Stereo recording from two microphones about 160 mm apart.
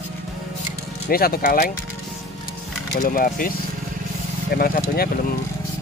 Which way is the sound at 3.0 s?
60° left (ahead or behind).